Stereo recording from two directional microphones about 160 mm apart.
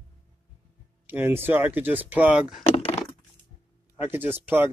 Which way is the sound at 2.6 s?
35° left (ahead or behind).